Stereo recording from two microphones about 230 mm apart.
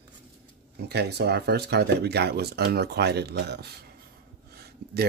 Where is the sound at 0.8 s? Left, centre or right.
Right.